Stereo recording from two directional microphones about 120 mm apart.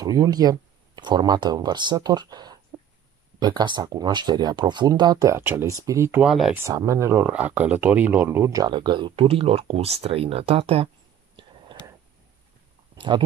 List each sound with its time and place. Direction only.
0.0 s speech: 30° right (ahead or behind)
5.4 s speech: 15° right (ahead or behind)
5.7 s speech: 30° right (ahead or behind)
6.2 s speech: 5° right (ahead or behind)
6.5 s speech: 25° right (ahead or behind)
7.2 s speech: 10° right (ahead or behind); by 8.7 s 30° right (ahead or behind)
8.7 s speech: 40° right (ahead or behind)
11.7 s a sound: 45° right (ahead or behind)
12.9 s a sound: 45° right (ahead or behind)